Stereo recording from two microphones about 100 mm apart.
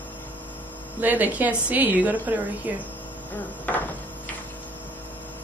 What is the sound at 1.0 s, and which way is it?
A woman's voice, 15° right (ahead or behind).